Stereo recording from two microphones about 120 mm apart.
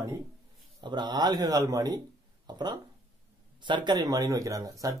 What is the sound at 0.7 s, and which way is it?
Speech, 35° right (ahead or behind).